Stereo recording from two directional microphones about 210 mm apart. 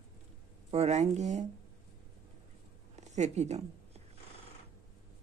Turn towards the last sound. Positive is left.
turn(degrees=-30)  # may be behind; listen again after turning